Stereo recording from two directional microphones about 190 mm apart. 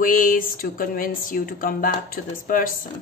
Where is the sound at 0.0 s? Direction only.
45° left (ahead or behind).